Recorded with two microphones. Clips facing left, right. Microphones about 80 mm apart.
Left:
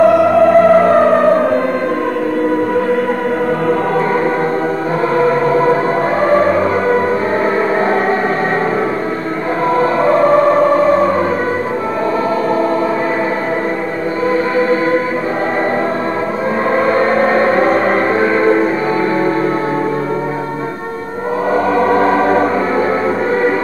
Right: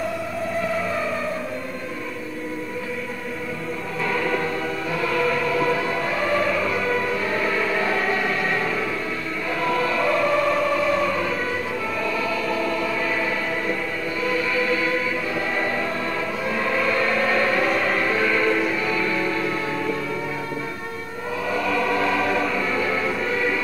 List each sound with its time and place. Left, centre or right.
0.0 s music: left
5.1 s music: left
9.8 s music: left
14.3 s music: left
16.7 s music: left
21.7 s music: left